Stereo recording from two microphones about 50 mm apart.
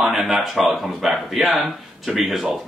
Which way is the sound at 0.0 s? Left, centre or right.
Centre.